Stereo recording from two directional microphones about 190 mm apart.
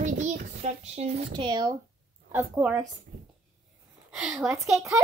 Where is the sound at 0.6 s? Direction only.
35° right (ahead or behind).